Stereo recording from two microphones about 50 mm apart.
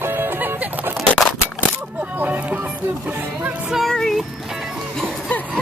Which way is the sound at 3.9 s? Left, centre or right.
Centre.